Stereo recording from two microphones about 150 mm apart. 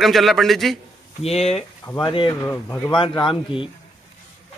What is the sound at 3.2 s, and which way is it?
Speech, 35° left (ahead or behind).